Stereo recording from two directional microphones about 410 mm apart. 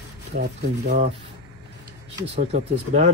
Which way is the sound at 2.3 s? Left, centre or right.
Centre.